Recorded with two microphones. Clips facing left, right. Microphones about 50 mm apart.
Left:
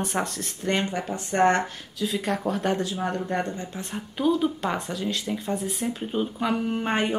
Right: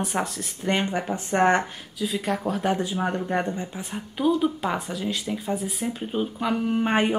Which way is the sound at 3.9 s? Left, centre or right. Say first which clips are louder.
Even; centre.